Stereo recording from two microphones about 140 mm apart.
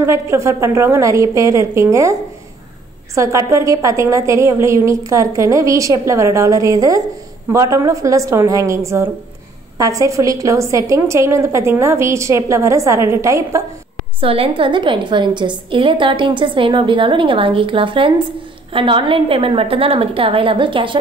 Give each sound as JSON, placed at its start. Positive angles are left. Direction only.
{"t": 0.0, "sound": "a woman's voice", "side_deg": -20}
{"t": 3.2, "sound": "a woman's voice", "side_deg": -20}
{"t": 14.2, "sound": "a woman's voice", "side_deg": -40}